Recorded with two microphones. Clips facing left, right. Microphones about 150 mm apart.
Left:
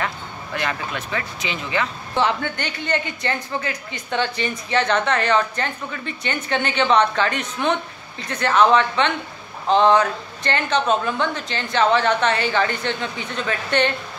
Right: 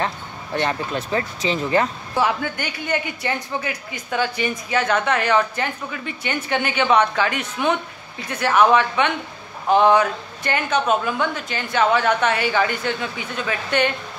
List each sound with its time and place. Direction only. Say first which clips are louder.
0.0 s speech: right 2 dB; 30° right (ahead or behind)
2.1 s a woman's voice: even; 5° right (ahead or behind)